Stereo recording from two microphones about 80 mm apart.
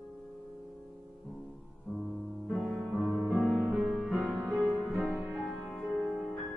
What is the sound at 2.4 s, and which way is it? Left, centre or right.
Music, centre.